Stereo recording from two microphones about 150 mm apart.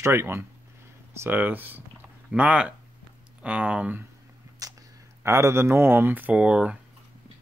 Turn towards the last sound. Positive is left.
turn(degrees=-5)  # may be behind; listen again after turning